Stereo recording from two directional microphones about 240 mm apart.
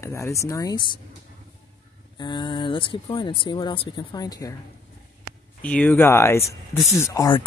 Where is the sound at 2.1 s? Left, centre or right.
Centre.